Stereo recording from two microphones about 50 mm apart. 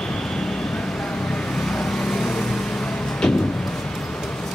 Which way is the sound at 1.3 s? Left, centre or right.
Centre.